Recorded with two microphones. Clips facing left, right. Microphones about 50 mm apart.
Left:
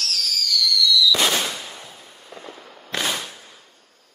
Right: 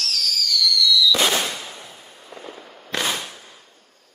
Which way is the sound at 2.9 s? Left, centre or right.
Centre.